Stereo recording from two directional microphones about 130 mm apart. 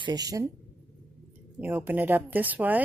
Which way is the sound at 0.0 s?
30° right (ahead or behind).